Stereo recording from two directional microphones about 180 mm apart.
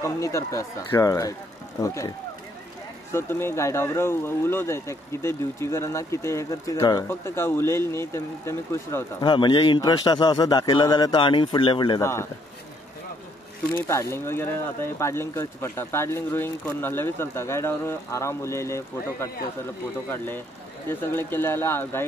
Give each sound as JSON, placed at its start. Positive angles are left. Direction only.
{"t": 0.0, "sound": "a man's voice", "side_deg": 15}
{"t": 9.2, "sound": "a man's voice", "side_deg": 25}
{"t": 13.7, "sound": "speech", "side_deg": 15}